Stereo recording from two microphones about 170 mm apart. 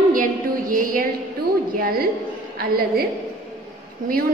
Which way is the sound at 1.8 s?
60° right (ahead or behind).